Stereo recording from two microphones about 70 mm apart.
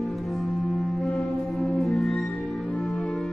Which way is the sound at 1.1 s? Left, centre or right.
Centre.